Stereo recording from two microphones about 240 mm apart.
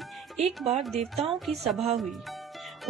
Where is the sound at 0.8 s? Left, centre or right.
Centre.